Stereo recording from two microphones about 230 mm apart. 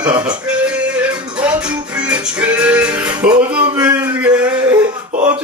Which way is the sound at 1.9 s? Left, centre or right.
Centre.